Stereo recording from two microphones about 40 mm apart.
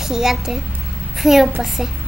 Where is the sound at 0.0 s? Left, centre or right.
Centre.